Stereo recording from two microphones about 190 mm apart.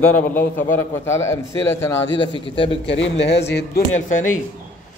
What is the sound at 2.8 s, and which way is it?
A man's voice, 75° left (ahead or behind).